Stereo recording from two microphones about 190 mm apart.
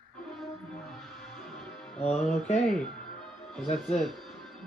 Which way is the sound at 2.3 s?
35° left (ahead or behind).